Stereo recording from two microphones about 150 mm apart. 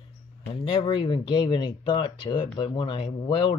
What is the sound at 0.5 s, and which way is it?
Speech, 35° left (ahead or behind).